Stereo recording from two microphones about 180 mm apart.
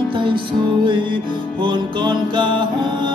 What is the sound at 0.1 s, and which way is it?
Music, 30° right (ahead or behind).